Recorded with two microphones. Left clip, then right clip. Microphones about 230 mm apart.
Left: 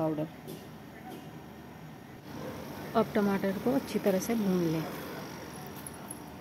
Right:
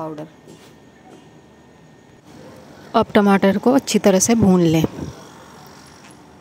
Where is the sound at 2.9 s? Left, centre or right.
Right.